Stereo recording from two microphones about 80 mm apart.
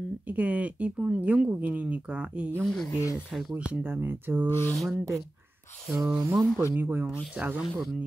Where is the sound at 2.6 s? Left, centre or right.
Centre.